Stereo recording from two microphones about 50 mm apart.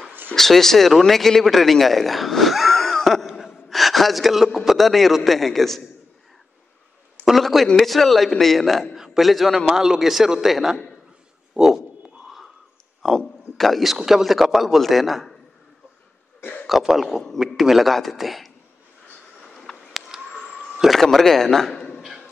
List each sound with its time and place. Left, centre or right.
0.4 s a man's voice: centre
3.3 s a sound: centre
4.6 s speech: centre
7.2 s speech: centre
8.9 s a sound: centre
9.3 s a man's voice: centre
11.6 s frog: right
13.6 s speech: centre
13.9 s speech: centre
16.8 s speech: centre
19.4 s a sound: centre
20.1 s a sound: centre
20.7 s a man's voice: centre